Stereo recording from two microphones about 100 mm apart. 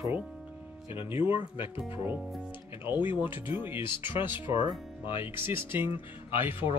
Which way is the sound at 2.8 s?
20° right (ahead or behind).